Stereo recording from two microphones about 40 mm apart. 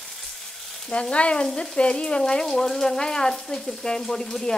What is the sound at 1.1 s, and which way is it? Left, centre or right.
Frying, left.